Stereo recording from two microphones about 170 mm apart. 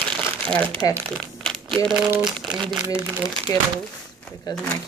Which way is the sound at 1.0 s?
5° left (ahead or behind).